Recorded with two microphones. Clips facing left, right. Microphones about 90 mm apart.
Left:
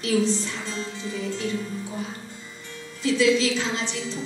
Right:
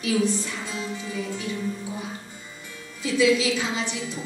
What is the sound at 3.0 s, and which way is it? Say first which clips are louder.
A woman's voice: even; 10° right (ahead or behind).